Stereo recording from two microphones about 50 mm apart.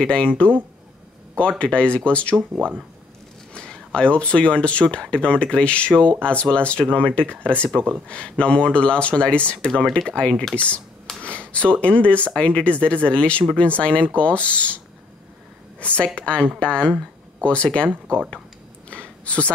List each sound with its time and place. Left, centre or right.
0.0 s speech: left
1.6 s speech: left
3.5 s speech: centre
11.2 s a sound: left
11.8 s speech: left
15.8 s speech: left
18.9 s a sound: left